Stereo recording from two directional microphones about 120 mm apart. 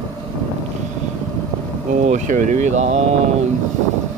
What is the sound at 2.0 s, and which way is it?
Speech, 90° right.